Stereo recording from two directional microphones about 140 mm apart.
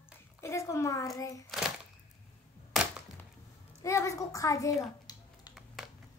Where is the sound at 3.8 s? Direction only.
20° left (ahead or behind).